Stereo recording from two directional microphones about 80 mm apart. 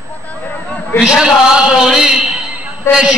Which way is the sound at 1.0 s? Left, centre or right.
Centre.